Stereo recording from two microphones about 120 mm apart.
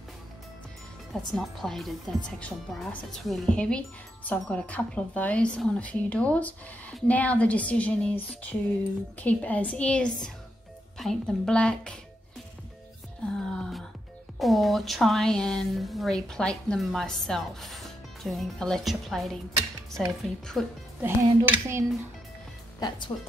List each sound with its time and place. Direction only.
1.1 s a woman's voice: centre (ahead or behind)
13.4 s music: 5° left (ahead or behind)
14.4 s a woman's voice: centre (ahead or behind)
21.0 s dishes: 20° right (ahead or behind)
22.8 s speech: 35° left (ahead or behind)